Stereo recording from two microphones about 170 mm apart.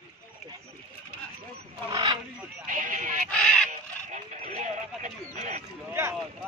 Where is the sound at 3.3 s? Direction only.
5° left (ahead or behind).